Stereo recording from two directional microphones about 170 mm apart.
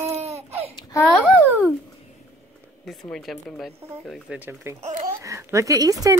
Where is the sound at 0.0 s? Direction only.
40° right (ahead or behind).